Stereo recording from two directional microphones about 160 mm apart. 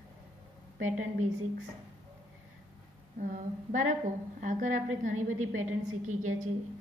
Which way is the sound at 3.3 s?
50° right (ahead or behind).